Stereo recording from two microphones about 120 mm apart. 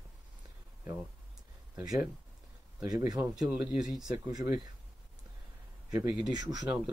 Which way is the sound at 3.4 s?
5° right (ahead or behind).